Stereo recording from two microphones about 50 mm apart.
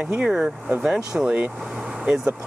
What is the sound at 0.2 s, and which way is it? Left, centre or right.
Speech, centre.